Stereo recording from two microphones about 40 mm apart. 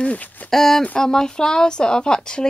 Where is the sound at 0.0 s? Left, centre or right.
Left.